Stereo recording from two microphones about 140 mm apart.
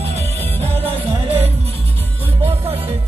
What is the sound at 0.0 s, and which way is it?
Music, 50° right (ahead or behind).